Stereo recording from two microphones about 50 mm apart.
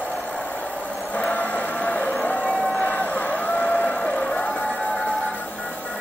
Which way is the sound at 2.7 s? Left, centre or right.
Left.